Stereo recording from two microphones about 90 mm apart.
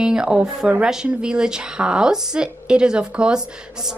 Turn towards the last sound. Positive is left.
turn(degrees=-10)  # may be behind; listen again after turning